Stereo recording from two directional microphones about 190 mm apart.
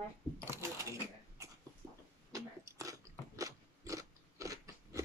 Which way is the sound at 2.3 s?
15° right (ahead or behind).